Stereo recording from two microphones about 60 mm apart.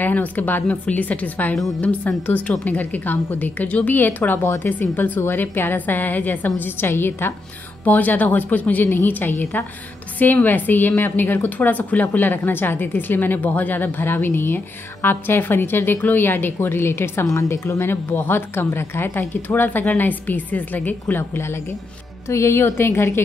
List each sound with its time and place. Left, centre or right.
0.0 s a woman's voice: left
22.3 s a woman's voice: left